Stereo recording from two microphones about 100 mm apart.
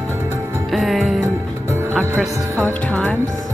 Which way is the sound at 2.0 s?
15° right (ahead or behind).